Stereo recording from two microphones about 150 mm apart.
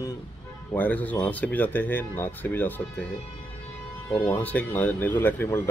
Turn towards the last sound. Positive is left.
turn(degrees=15)  # may be behind; listen again after turning